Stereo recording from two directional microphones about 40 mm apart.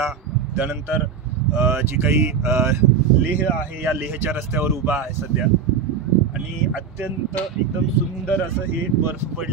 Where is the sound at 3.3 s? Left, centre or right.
Right.